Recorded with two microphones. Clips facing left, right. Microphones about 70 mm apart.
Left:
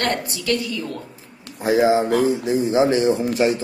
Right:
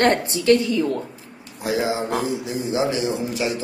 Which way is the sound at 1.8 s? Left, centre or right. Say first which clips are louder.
Left 7 dB; left.